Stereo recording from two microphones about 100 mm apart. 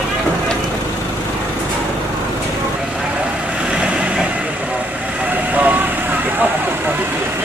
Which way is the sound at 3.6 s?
10° right (ahead or behind).